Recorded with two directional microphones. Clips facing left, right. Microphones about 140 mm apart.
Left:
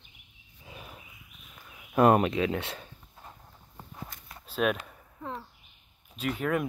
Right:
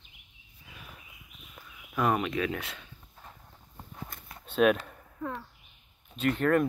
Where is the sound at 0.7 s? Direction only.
30° left (ahead or behind).